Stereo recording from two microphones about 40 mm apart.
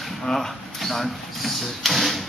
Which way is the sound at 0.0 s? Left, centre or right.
Centre.